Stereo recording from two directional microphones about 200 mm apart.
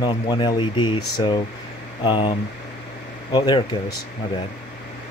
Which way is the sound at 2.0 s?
25° left (ahead or behind).